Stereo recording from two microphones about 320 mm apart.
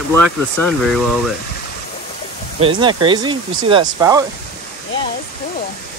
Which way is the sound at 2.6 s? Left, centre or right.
Centre.